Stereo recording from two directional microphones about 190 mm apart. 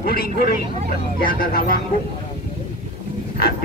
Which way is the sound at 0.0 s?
55° left (ahead or behind).